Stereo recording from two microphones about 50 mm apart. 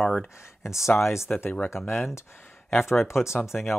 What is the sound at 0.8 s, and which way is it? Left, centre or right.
Speech, left.